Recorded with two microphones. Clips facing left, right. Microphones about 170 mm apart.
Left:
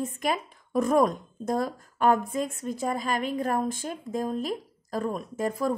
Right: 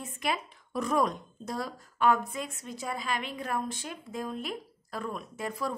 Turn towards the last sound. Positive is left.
turn(degrees=45)  # may be behind; listen again after turning